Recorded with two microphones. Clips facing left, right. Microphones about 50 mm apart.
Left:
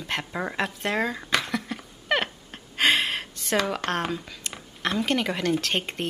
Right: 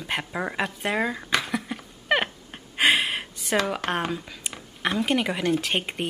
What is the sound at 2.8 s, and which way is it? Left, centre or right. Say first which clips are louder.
Speech: right 1 dB; centre.